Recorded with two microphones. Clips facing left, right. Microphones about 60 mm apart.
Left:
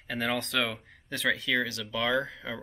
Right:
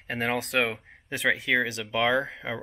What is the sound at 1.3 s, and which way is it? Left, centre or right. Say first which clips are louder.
Speech: right 4 dB; right.